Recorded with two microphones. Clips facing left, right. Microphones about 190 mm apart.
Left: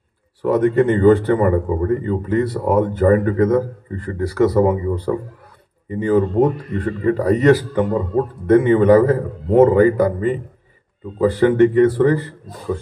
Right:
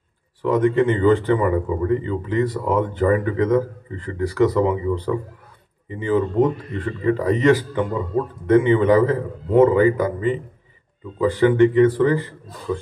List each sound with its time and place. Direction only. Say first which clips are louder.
0.4 s speech: left 2 dB; 40° left (ahead or behind)